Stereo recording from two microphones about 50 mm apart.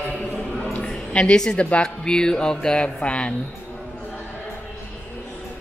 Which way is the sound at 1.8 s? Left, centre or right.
Centre.